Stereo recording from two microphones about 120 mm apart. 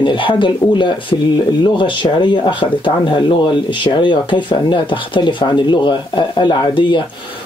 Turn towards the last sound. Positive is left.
turn(degrees=40)  # may be behind; listen again after turning